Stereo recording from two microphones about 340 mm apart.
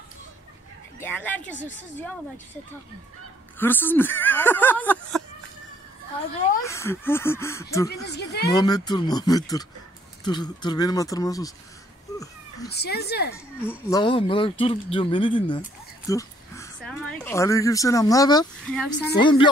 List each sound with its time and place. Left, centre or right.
0.9 s speech: centre
3.5 s speech: centre
6.6 s speech: centre
8.1 s speech: left
8.5 s speech: centre
12.6 s speech: left
13.6 s speech: centre
19.1 s speech: centre